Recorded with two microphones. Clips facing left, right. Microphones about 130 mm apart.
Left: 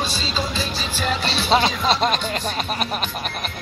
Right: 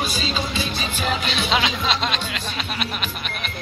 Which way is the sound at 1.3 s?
35° left (ahead or behind).